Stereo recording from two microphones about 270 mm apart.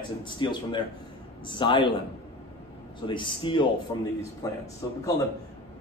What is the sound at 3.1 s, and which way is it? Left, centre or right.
Speech, centre.